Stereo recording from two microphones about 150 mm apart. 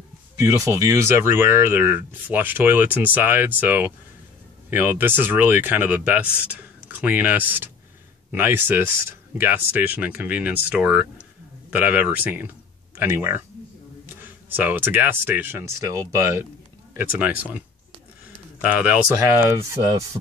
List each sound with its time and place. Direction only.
0.4 s speech: 20° right (ahead or behind)
18.6 s speech: 10° right (ahead or behind)